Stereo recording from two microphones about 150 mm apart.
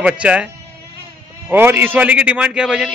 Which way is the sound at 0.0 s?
10° right (ahead or behind).